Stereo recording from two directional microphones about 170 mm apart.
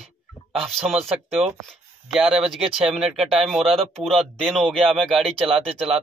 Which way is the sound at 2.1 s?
5° right (ahead or behind).